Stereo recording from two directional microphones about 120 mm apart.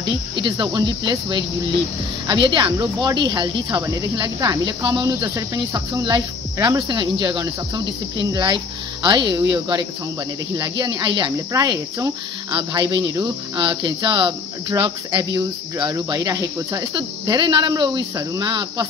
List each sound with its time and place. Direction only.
0.4 s speech: 40° right (ahead or behind)
15.3 s speech: 30° right (ahead or behind)